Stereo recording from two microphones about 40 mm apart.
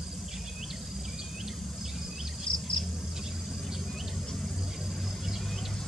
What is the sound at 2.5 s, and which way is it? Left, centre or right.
Bird, left.